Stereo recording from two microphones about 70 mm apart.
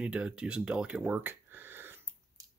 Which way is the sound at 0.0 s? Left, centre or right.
Centre.